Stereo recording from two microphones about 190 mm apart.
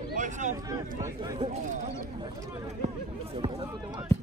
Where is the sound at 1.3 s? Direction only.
35° right (ahead or behind).